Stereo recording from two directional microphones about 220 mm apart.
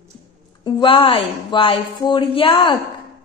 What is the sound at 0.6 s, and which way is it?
A woman's voice, 20° left (ahead or behind).